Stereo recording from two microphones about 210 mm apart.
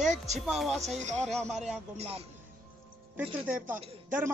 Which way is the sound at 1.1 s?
Centre (ahead or behind).